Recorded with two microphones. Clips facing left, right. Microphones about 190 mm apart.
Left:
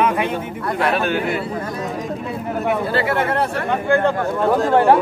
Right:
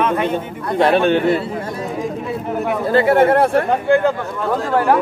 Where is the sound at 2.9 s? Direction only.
50° right (ahead or behind).